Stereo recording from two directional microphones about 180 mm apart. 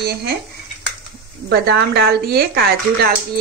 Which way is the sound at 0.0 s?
60° right (ahead or behind).